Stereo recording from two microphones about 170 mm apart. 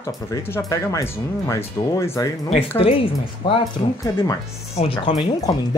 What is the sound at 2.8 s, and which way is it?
Speech, 35° left (ahead or behind).